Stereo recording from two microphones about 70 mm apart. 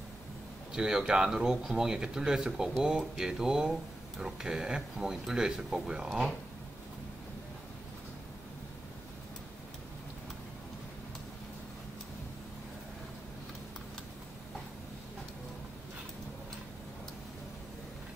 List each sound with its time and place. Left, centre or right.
0.7 s speech: centre